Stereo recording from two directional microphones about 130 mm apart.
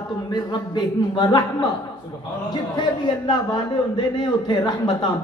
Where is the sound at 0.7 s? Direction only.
35° left (ahead or behind).